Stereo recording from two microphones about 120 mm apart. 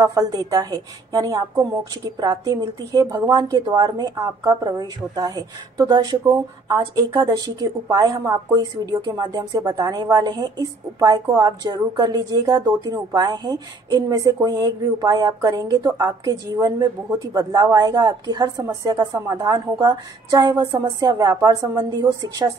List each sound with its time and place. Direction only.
0.0 s a woman's voice: 30° right (ahead or behind)